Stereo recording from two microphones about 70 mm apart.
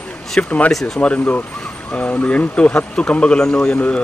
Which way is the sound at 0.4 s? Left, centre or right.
Left.